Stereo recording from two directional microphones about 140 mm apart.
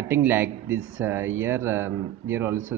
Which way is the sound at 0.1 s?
15° right (ahead or behind).